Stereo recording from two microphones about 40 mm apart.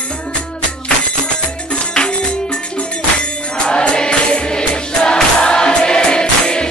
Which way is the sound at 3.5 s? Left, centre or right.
Left.